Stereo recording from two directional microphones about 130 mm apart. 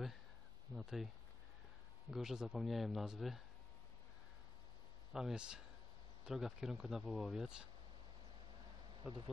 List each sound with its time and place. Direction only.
0.7 s speech: centre (ahead or behind)
5.1 s speech: 5° right (ahead or behind)
9.0 s speech: 35° right (ahead or behind)